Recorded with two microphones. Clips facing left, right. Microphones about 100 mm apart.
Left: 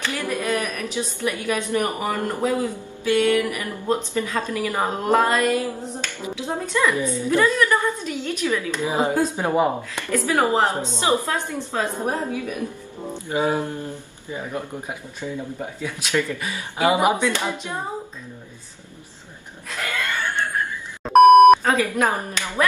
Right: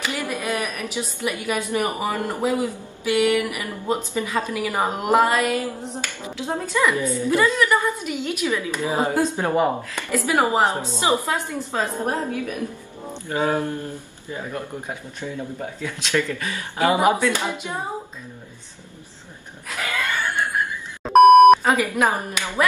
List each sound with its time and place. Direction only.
0.0 s a woman's voice: 15° right (ahead or behind)
7.0 s a woman's voice: 20° left (ahead or behind)
7.2 s a woman's voice: 10° right (ahead or behind)
8.8 s speech: 15° left (ahead or behind)
9.9 s a woman's voice: 15° right (ahead or behind)
12.1 s a woman's voice: centre (ahead or behind)
13.3 s speech: 15° left (ahead or behind)
17.3 s a woman's voice: 15° right (ahead or behind)
19.7 s chuckle: 5° right (ahead or behind)
21.0 s beep: centre (ahead or behind)
21.6 s a woman's voice: 15° right (ahead or behind)